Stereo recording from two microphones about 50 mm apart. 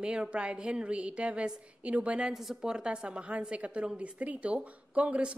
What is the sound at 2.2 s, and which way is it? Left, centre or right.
A woman's voice, centre.